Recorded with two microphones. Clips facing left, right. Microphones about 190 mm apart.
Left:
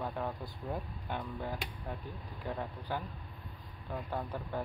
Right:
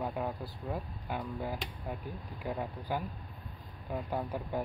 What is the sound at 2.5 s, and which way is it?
Speech, 10° right (ahead or behind).